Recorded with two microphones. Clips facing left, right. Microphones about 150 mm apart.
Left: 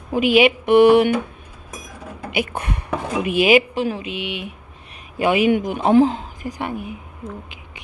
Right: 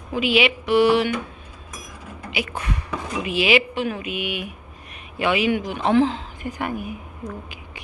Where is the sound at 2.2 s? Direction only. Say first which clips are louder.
Left 4 dB; 50° left (ahead or behind); by 4.6 s 25° left (ahead or behind).